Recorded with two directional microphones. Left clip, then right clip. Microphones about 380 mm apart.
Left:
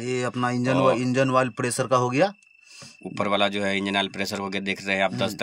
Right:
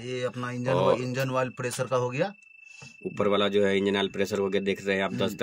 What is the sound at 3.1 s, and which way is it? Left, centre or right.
Speech, centre.